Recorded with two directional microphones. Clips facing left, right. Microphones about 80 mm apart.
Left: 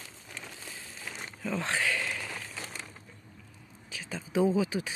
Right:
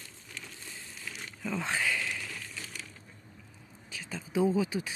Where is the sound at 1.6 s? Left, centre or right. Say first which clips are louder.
Left 1 dB; centre.